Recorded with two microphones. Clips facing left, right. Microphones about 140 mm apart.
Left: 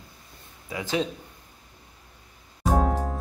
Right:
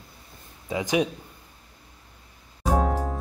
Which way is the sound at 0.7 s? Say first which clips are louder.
Right 3 dB; 20° right (ahead or behind).